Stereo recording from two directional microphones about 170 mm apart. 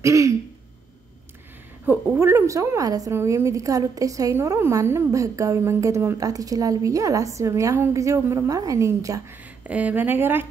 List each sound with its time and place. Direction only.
0.0 s a woman's voice: 20° right (ahead or behind)
1.9 s a woman's voice: 15° right (ahead or behind)